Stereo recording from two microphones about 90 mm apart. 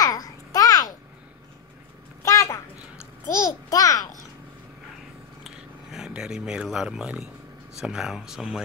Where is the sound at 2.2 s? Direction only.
35° left (ahead or behind).